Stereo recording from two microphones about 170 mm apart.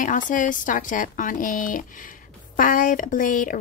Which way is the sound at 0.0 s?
50° left (ahead or behind).